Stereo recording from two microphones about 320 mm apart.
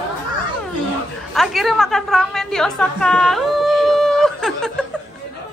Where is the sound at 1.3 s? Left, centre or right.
Centre.